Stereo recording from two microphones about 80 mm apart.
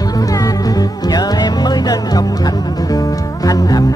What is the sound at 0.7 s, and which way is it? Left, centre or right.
Music, left.